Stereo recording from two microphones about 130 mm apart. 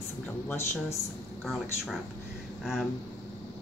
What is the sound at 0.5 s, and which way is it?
Speech, 20° left (ahead or behind).